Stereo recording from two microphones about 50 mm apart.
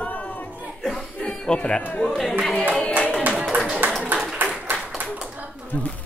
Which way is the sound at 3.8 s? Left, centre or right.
Right.